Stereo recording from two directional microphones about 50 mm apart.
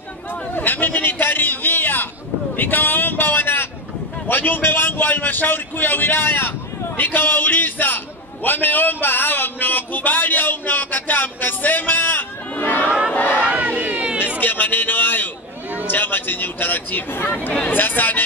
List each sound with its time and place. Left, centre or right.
0.6 s a man's voice: left
13.5 s crowd: right
14.4 s a man's voice: left